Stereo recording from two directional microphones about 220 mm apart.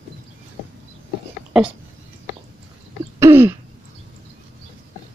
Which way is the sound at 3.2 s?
10° right (ahead or behind).